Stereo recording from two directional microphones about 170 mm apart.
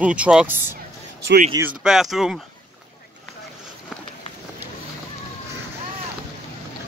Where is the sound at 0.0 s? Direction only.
5° right (ahead or behind).